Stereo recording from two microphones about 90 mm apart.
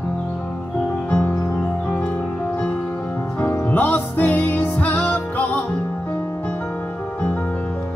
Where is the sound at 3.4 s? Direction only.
25° left (ahead or behind).